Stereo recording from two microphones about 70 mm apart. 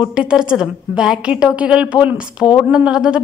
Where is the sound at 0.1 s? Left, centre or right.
Centre.